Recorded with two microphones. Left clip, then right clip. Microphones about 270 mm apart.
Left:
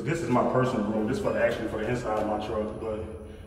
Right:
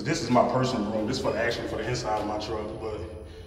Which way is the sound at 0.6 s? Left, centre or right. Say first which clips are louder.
Even; centre.